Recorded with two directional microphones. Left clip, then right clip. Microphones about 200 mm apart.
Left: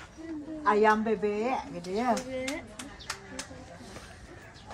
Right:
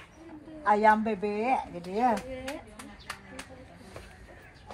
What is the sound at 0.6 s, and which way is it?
A man's voice, 50° right (ahead or behind).